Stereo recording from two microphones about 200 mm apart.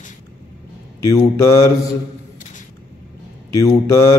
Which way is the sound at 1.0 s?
15° left (ahead or behind).